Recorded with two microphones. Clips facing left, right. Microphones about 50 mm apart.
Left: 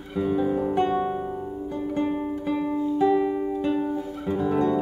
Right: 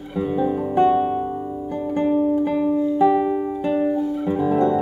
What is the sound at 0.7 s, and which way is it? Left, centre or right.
Music, centre.